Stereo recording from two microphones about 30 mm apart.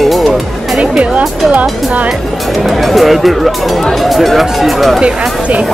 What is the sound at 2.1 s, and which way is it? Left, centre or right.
Speech, centre.